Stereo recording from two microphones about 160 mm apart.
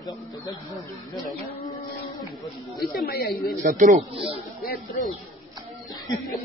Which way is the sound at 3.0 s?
75° left (ahead or behind).